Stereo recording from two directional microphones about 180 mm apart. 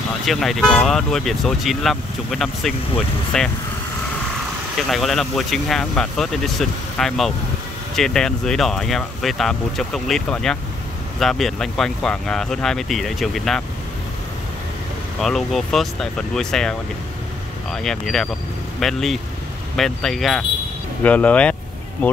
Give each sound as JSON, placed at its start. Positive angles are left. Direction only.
{"t": 0.2, "sound": "speech", "side_deg": 0}
{"t": 4.8, "sound": "speech", "side_deg": 0}
{"t": 15.1, "sound": "speech", "side_deg": 0}